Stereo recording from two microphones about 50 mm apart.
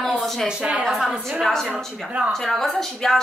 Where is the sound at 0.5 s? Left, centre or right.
Right.